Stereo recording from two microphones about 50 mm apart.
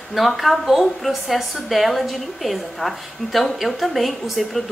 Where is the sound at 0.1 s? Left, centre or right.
Centre.